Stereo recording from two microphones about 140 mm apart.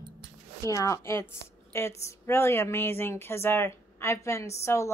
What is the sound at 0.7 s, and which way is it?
A woman's voice, 25° left (ahead or behind).